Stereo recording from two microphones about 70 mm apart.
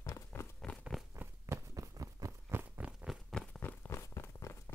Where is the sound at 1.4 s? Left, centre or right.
Right.